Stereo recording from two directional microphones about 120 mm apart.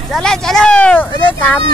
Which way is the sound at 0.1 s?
5° left (ahead or behind).